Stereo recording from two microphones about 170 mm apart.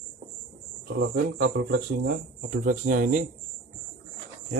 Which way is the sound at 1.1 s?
90° right.